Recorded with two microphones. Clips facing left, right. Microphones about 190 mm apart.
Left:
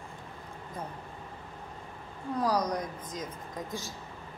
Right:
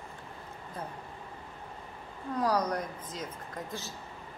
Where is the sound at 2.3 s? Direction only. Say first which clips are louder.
Even; 10° left (ahead or behind).